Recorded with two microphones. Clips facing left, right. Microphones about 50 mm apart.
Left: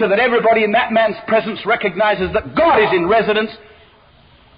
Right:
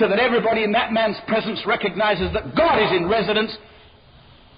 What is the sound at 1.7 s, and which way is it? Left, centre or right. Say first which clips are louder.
Speech: left 4 dB; centre.